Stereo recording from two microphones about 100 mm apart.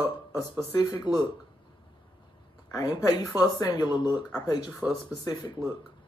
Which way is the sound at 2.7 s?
40° left (ahead or behind).